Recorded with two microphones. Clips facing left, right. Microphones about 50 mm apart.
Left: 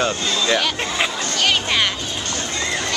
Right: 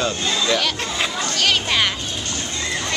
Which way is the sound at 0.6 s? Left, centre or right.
Centre.